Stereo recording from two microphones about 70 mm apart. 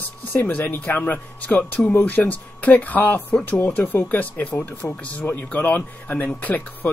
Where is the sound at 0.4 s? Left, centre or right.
Left.